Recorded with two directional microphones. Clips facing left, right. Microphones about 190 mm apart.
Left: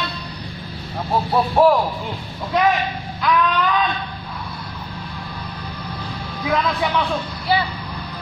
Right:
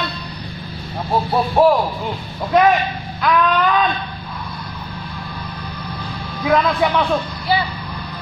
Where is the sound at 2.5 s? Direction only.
55° right (ahead or behind).